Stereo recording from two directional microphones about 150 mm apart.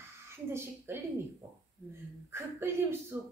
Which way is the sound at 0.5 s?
15° right (ahead or behind).